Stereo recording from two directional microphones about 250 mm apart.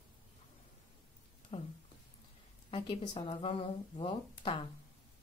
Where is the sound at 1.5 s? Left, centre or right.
Left.